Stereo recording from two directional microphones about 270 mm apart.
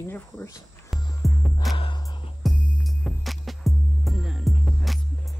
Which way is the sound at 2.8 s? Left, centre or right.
Centre.